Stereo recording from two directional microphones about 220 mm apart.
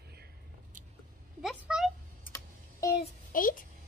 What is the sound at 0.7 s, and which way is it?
Vehicle, 35° right (ahead or behind).